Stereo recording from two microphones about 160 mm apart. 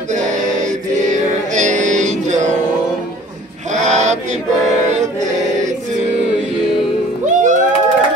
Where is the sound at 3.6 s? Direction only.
50° right (ahead or behind).